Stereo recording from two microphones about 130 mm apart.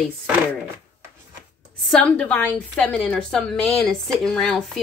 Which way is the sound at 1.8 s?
5° left (ahead or behind).